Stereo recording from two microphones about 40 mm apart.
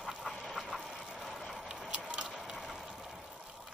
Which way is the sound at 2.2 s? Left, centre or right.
Centre.